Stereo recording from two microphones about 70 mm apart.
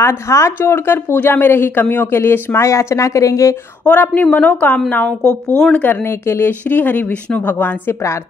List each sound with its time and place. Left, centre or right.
0.0 s speech: left
3.8 s a woman's voice: left
6.0 s a woman's voice: left